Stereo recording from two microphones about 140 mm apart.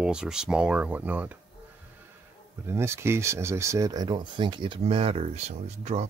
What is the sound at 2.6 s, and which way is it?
Speech, 20° right (ahead or behind).